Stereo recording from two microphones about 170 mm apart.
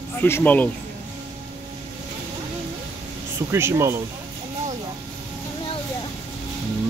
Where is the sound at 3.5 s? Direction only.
15° right (ahead or behind).